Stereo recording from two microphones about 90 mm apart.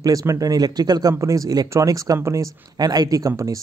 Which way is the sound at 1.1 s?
35° right (ahead or behind).